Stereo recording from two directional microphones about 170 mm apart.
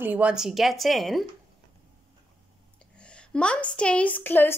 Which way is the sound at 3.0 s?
5° left (ahead or behind).